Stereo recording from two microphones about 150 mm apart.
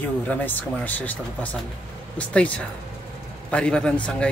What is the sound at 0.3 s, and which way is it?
Speech, 10° left (ahead or behind).